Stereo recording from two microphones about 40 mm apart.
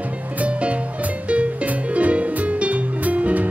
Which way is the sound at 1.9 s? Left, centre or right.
Right.